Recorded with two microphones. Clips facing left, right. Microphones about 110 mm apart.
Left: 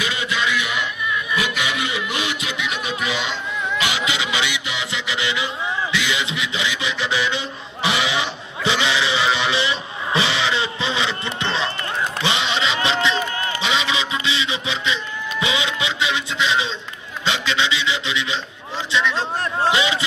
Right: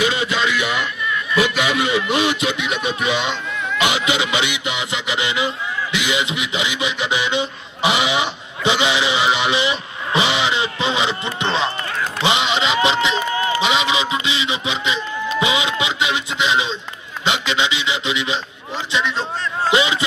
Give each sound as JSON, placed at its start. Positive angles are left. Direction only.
{"t": 0.0, "sound": "music", "side_deg": -30}
{"t": 1.8, "sound": "music", "side_deg": -25}
{"t": 3.8, "sound": "a sound", "side_deg": -20}
{"t": 17.2, "sound": "a man's voice", "side_deg": -20}
{"t": 19.7, "sound": "music", "side_deg": -20}